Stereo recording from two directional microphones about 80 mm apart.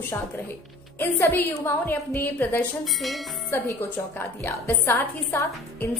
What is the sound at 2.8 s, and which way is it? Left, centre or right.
Music, centre.